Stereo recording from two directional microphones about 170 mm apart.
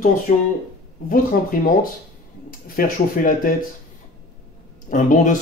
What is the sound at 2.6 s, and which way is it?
Speech, 55° left (ahead or behind).